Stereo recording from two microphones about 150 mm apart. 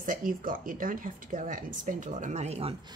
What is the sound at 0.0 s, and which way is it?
Speech, 65° right (ahead or behind).